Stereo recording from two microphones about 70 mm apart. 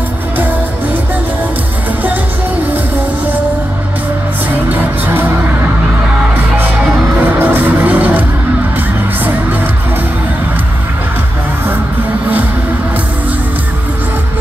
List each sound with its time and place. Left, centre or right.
4.6 s music: right
7.2 s music: right